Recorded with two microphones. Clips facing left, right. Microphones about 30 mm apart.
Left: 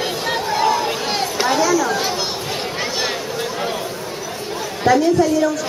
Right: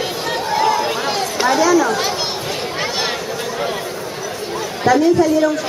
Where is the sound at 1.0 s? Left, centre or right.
Centre.